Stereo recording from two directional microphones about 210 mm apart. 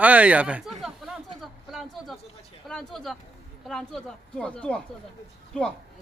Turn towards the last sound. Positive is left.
turn(degrees=5)  # may be behind; listen again after turning